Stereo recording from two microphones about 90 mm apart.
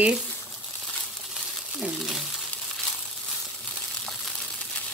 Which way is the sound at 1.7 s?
5° right (ahead or behind).